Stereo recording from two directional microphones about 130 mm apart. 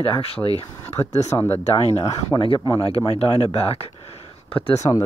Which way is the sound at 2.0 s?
30° left (ahead or behind).